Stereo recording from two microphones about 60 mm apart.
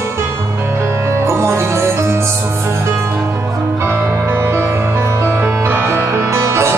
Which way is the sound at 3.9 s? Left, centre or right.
Right.